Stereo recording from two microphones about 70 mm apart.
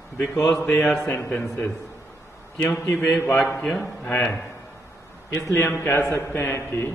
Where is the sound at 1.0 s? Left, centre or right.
Left.